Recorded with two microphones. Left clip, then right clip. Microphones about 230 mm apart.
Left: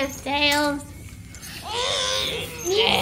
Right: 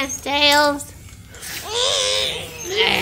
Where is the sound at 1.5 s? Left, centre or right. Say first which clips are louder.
Right 5 dB; right.